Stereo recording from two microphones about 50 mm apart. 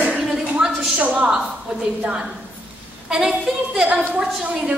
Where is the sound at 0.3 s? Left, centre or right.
Centre.